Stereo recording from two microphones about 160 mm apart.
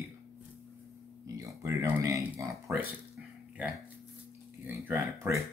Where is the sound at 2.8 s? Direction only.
10° right (ahead or behind).